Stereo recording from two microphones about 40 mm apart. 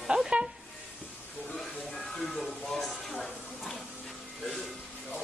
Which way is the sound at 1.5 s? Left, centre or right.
Centre.